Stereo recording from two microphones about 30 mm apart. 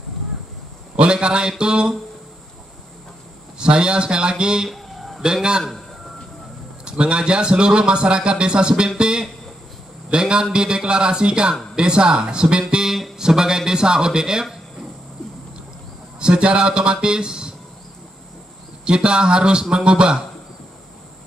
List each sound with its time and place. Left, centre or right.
0.9 s a man's voice: right
3.5 s a man's voice: right
4.6 s a sound: centre
5.2 s a man's voice: right
5.6 s a sound: centre
6.8 s a man's voice: right
14.4 s a sound: centre
16.2 s a man's voice: right
18.9 s a man's voice: right